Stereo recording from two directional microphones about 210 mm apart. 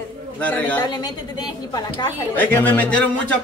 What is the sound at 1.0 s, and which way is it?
Speech, 20° left (ahead or behind).